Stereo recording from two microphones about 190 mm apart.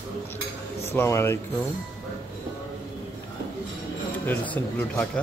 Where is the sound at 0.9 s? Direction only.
15° left (ahead or behind).